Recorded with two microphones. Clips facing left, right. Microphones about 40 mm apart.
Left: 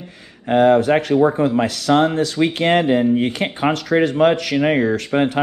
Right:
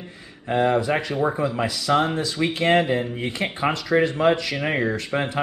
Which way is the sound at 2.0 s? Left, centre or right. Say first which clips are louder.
Left 6 dB; left.